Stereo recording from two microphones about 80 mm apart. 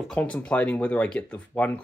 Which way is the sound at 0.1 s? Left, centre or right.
Centre.